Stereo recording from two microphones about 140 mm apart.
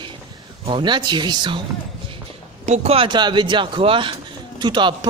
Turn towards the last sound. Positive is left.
turn(degrees=-35)  # may be behind; listen again after turning